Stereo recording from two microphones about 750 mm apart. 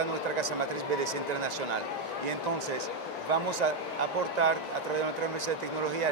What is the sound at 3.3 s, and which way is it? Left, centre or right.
Speech, right.